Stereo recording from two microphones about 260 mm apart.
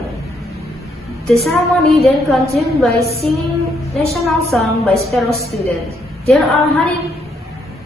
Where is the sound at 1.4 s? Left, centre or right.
Centre.